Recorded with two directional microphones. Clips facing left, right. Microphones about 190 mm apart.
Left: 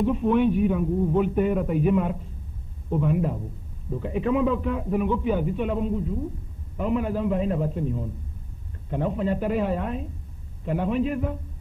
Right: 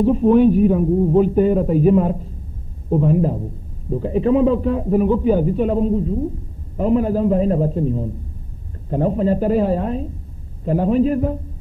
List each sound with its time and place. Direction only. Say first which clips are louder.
0.0 s a man's voice: right 8 dB; 35° right (ahead or behind)